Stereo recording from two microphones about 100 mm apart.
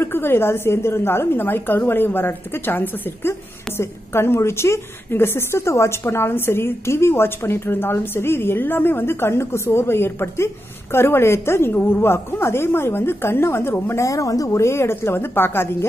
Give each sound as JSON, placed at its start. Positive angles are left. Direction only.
{"t": 0.0, "sound": "a woman's voice", "side_deg": 25}